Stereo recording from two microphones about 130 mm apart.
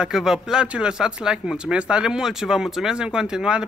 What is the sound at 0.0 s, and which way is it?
Speech, 5° right (ahead or behind).